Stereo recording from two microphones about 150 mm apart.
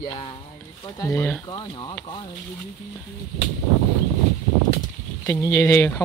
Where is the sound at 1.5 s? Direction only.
30° left (ahead or behind).